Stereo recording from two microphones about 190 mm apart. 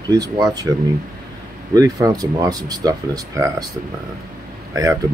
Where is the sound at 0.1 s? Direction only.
20° right (ahead or behind).